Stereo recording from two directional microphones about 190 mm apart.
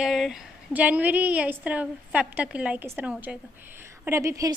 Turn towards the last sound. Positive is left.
turn(degrees=-15)  # may be behind; listen again after turning